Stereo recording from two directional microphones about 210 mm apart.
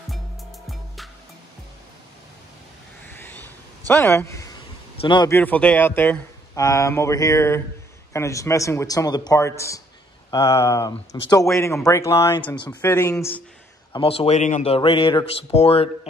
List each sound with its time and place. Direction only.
0.7 s music: centre (ahead or behind)
3.1 s a sound: 10° left (ahead or behind)
5.0 s speech: 20° left (ahead or behind)
5.3 s speech: 10° left (ahead or behind)
13.9 s speech: 25° left (ahead or behind)